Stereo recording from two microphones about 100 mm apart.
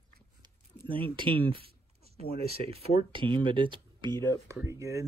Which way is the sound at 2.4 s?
90° right.